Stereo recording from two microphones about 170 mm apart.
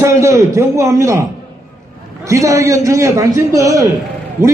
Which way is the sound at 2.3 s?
20° right (ahead or behind).